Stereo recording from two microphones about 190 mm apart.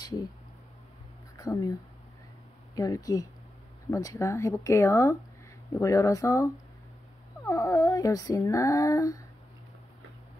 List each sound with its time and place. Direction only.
0.0 s speech: 20° left (ahead or behind)
1.4 s speech: 20° left (ahead or behind)